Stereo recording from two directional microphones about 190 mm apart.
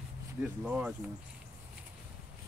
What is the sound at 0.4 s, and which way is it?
Speech, 5° right (ahead or behind).